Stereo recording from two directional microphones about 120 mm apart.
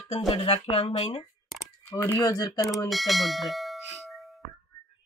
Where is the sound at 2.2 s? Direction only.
30° left (ahead or behind).